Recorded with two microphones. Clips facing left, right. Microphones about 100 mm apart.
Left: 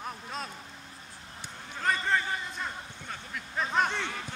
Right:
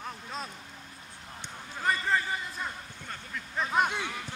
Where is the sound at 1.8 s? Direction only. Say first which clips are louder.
Even; centre (ahead or behind).